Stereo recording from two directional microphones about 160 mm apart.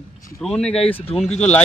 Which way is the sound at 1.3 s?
45° left (ahead or behind).